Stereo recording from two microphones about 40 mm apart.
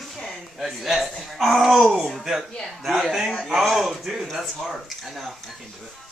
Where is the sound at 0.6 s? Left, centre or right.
Centre.